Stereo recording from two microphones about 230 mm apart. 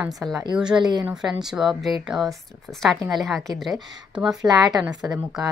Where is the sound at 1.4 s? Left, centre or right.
Centre.